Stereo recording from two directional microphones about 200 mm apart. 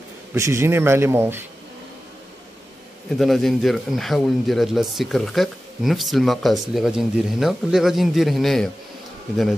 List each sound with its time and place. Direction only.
0.3 s speech: 15° right (ahead or behind)
3.2 s a man's voice: centre (ahead or behind)